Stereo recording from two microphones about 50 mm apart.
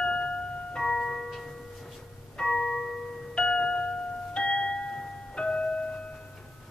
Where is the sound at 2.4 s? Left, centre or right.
Centre.